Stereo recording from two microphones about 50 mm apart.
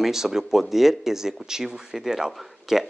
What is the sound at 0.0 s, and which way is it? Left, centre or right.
Speech, centre.